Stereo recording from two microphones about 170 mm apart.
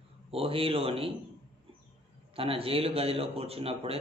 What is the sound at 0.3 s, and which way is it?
Speech, 35° right (ahead or behind).